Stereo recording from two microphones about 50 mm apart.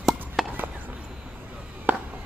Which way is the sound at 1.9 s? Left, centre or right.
Right.